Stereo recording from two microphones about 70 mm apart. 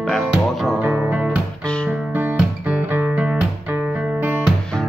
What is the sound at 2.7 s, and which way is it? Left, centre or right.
Music, right.